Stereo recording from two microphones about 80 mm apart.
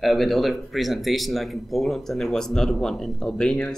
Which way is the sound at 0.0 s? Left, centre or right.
Centre.